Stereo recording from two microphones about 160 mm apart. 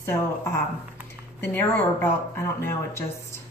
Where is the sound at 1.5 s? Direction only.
10° left (ahead or behind).